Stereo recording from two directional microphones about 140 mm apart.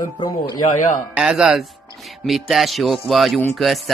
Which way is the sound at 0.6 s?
60° left (ahead or behind).